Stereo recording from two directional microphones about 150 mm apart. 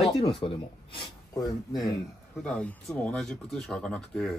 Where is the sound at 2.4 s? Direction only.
5° left (ahead or behind).